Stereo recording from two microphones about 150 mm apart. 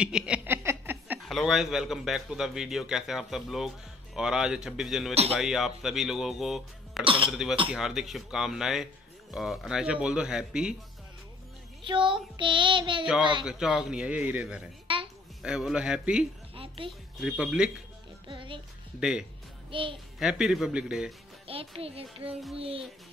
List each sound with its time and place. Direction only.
0.0 s a sound: 5° right (ahead or behind)
1.3 s a man's voice: centre (ahead or behind)
11.8 s child singing: 30° right (ahead or behind)
13.0 s a man's voice: 5° right (ahead or behind)
14.9 s a sound: 35° right (ahead or behind)
15.4 s a man's voice: 5° right (ahead or behind)
16.5 s a woman's voice: 35° right (ahead or behind)
17.2 s a man's voice: 5° right (ahead or behind)
18.3 s speech: 35° right (ahead or behind)
18.9 s a man's voice: 5° right (ahead or behind)
19.7 s child singing: 35° right (ahead or behind)
20.2 s a man's voice: 5° right (ahead or behind)
21.5 s child singing: 40° right (ahead or behind)